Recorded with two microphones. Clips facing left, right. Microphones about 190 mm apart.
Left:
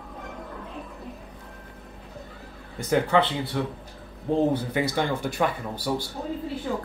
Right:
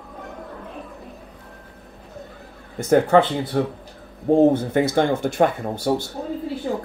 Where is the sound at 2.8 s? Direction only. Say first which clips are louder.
Right 6 dB; 45° right (ahead or behind).